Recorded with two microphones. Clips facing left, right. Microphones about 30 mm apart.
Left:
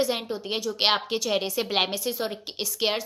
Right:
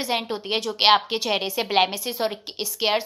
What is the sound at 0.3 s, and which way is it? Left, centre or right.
Speech, right.